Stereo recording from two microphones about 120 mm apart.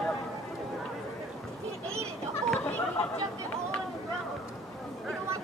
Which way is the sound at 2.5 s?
10° left (ahead or behind).